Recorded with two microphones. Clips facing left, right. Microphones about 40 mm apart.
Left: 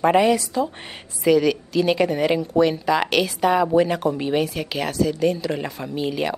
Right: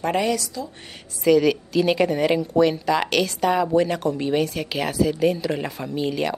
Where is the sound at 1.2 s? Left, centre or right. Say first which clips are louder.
Even; centre.